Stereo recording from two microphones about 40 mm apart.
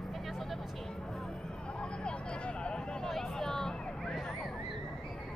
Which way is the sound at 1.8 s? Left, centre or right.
Left.